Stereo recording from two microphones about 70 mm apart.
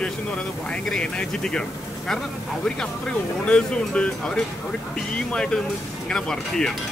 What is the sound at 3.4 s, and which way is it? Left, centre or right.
Speech, centre.